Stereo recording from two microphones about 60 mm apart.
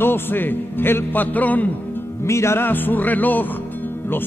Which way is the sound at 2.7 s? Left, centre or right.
Left.